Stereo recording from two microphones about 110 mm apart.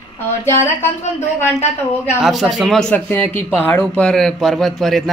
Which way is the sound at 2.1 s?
5° right (ahead or behind).